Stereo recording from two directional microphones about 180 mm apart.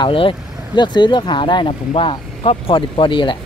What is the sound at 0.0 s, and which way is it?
Speech, 30° left (ahead or behind).